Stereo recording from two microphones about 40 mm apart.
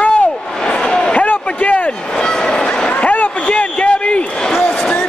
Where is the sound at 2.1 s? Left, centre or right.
Centre.